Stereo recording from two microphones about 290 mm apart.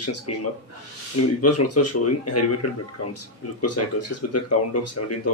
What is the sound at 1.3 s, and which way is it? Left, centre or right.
Speech, left.